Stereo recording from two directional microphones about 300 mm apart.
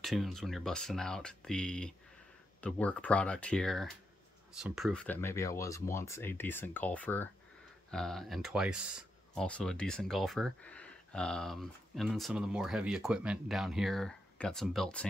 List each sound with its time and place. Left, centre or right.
0.0 s speech: centre